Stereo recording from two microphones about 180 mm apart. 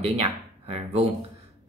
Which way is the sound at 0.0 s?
35° right (ahead or behind).